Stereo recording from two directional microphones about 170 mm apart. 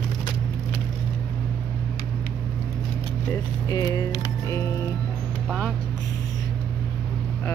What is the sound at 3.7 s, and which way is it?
Music, 20° left (ahead or behind).